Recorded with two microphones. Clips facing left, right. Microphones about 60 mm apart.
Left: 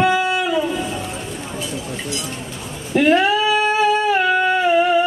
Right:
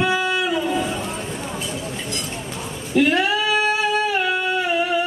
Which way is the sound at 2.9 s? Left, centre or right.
Left.